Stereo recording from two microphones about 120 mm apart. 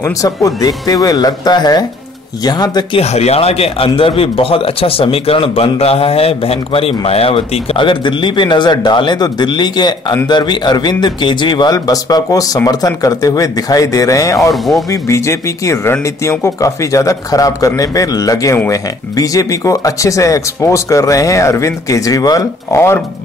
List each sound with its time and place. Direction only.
0.0 s a man's voice: 30° left (ahead or behind)
3.0 s a man's voice: 60° left (ahead or behind); by 14.5 s 25° left (ahead or behind)
14.5 s speech: centre (ahead or behind)
14.9 s speech: 25° left (ahead or behind)